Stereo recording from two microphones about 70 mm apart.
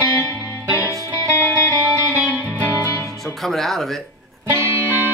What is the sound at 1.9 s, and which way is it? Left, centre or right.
Music, left.